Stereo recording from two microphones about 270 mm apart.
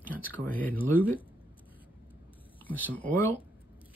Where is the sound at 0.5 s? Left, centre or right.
Centre.